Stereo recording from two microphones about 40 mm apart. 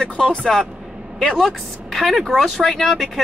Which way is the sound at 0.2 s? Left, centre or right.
Centre.